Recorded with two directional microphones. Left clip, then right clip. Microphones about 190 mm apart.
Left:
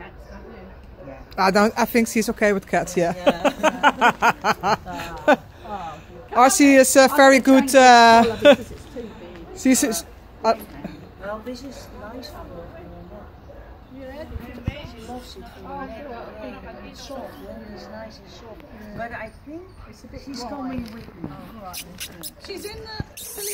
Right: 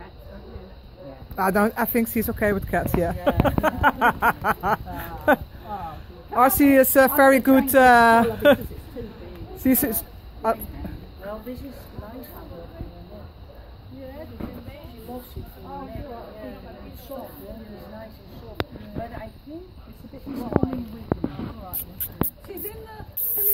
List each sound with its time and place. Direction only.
1.3 s speech: centre (ahead or behind)
9.5 s a sound: centre (ahead or behind)
21.6 s speech: centre (ahead or behind)